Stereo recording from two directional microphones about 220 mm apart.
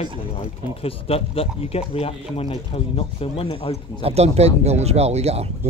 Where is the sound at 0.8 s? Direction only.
25° left (ahead or behind).